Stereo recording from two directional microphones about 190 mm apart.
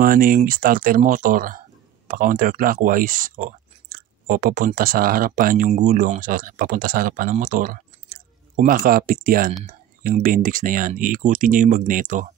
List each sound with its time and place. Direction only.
0.0 s speech: 50° right (ahead or behind)